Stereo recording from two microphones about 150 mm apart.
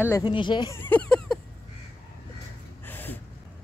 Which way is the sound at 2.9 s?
15° left (ahead or behind).